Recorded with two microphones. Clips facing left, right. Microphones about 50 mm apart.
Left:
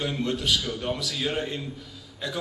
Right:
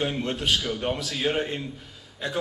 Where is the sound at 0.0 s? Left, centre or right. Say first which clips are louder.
Right 1 dB; right.